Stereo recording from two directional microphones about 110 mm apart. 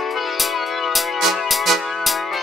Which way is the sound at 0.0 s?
Centre (ahead or behind).